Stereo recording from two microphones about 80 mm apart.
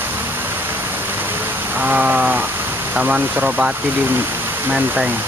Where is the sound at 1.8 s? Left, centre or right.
Right.